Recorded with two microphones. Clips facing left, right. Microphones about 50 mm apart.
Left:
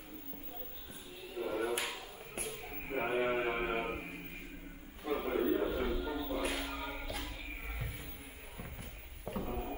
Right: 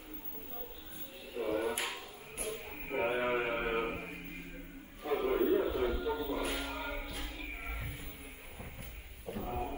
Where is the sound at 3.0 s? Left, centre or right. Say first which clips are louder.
Right 1 dB; centre.